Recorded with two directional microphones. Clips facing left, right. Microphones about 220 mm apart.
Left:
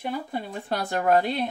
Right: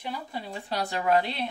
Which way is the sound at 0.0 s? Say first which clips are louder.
Left 5 dB; 50° left (ahead or behind).